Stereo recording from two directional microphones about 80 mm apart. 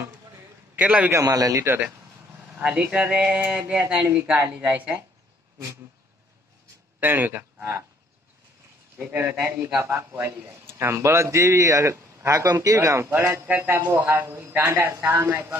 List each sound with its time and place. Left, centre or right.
0.7 s speech: centre
1.2 s a man's voice: right
2.5 s a man's voice: centre
7.0 s speech: right
8.9 s a man's voice: right
13.1 s a man's voice: right